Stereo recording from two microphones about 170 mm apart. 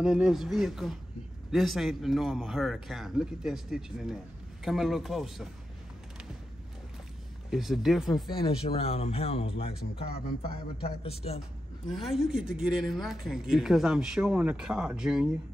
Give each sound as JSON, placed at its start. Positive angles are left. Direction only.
{"t": 0.0, "sound": "speech", "side_deg": -5}
{"t": 7.5, "sound": "speech", "side_deg": 0}
{"t": 8.1, "sound": "speech", "side_deg": 30}
{"t": 11.9, "sound": "speech", "side_deg": 0}